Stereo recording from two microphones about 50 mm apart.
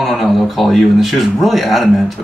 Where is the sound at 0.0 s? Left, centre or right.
Centre.